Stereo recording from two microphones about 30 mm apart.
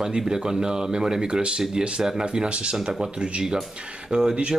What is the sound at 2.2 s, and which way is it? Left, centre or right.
Speech, right.